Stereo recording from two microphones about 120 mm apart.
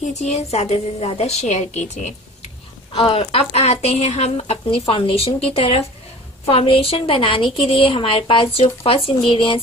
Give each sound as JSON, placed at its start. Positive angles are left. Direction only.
{"t": 0.0, "sound": "a woman's voice", "side_deg": 65}